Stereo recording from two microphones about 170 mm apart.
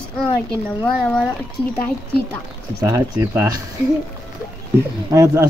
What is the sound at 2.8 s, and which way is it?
Speech, 15° right (ahead or behind).